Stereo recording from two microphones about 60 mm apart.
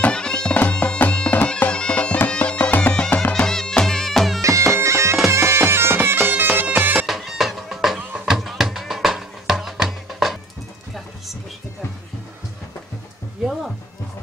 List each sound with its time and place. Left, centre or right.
0.0 s music: centre
1.7 s bagpipes: centre
3.1 s music: left
3.4 s music: centre
4.4 s bagpipes: right
7.1 s music: centre